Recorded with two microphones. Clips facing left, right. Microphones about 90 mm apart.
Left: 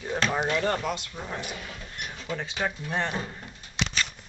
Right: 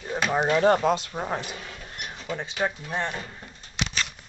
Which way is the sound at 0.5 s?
20° right (ahead or behind).